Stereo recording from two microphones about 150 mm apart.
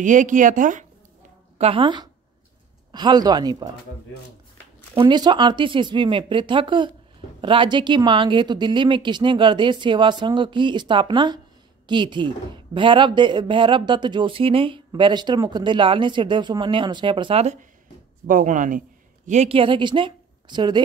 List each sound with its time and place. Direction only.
0.0 s speech: 60° right (ahead or behind)
1.6 s speech: 35° right (ahead or behind)
4.9 s speech: 30° right (ahead or behind)
18.2 s speech: 60° right (ahead or behind)
19.2 s speech: 50° right (ahead or behind); by 20.8 s 30° right (ahead or behind)